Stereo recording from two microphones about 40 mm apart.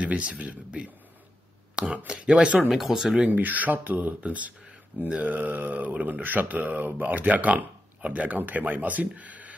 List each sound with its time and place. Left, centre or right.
0.0 s speech: right
1.8 s speech: right
3.3 s speech: right
8.4 s speech: right